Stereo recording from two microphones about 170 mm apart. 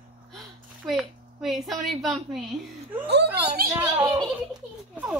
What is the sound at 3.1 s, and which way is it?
Speech, 80° right.